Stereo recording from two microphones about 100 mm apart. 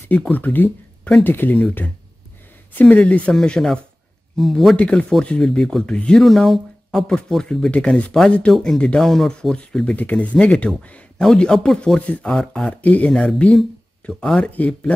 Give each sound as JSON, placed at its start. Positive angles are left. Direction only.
{"t": 0.1, "sound": "speech", "side_deg": 15}